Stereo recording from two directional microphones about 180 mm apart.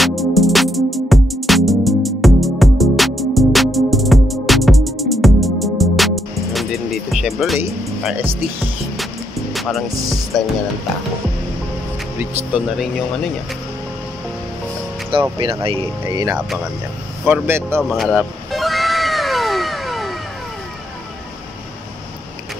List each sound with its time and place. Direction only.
0.0 s music: centre (ahead or behind)
9.5 s music: centre (ahead or behind)
10.3 s speech: centre (ahead or behind)
12.2 s speech: 10° right (ahead or behind)
15.1 s speech: 30° right (ahead or behind)
17.2 s speech: 10° right (ahead or behind)
17.8 s cat: centre (ahead or behind)